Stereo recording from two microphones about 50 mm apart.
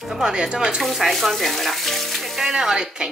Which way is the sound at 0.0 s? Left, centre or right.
Centre.